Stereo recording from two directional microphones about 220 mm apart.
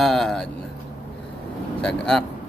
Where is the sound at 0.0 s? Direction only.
Centre (ahead or behind).